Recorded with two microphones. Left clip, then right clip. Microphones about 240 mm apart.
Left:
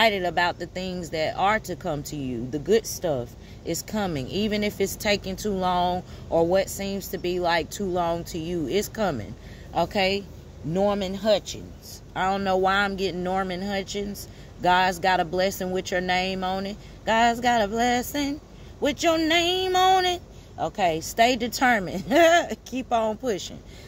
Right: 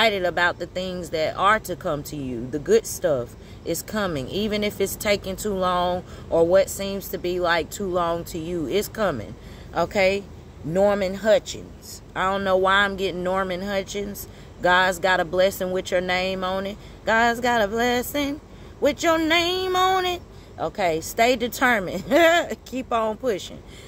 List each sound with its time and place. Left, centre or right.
0.2 s speech: left